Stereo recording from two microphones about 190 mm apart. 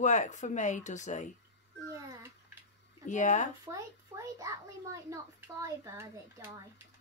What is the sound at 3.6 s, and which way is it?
A child's voice, 15° right (ahead or behind).